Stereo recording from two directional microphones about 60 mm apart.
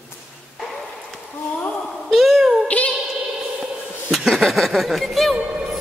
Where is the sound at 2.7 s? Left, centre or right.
Left.